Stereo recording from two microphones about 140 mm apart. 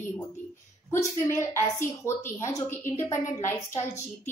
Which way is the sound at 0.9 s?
20° left (ahead or behind).